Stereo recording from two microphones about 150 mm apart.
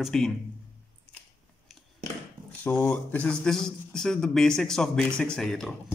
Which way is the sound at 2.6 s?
10° left (ahead or behind).